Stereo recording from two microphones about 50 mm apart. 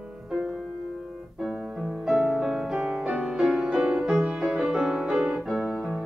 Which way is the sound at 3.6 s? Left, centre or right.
Centre.